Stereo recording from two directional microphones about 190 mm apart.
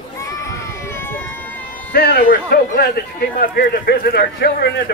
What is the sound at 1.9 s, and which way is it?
Speech, 55° left (ahead or behind).